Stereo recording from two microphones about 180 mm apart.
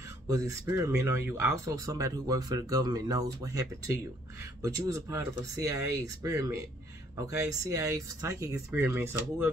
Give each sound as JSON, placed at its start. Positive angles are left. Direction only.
{"t": 0.3, "sound": "speech", "side_deg": -20}